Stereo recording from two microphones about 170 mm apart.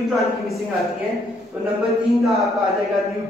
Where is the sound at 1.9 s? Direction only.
Centre (ahead or behind).